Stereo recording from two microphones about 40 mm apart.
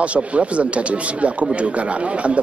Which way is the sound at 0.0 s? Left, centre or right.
Right.